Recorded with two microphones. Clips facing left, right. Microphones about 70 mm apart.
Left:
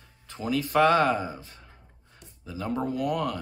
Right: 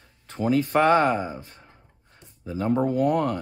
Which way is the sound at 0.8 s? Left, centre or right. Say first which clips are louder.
Right 1 dB; right.